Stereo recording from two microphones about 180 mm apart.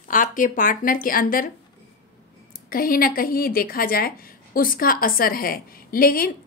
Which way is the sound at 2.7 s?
55° left (ahead or behind).